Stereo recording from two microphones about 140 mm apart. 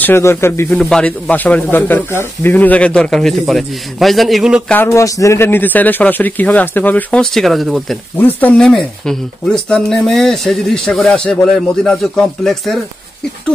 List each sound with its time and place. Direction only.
0.0 s speech: 15° left (ahead or behind)
0.7 s speech: 5° left (ahead or behind)
4.8 s speech: 20° left (ahead or behind); by 8.0 s centre (ahead or behind)
8.2 s speech: 10° left (ahead or behind)